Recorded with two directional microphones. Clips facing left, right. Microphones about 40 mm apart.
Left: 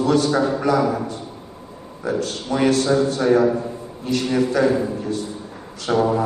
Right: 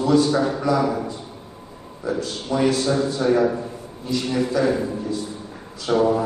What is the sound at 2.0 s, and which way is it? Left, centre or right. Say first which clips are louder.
Speech: left 2 dB; left.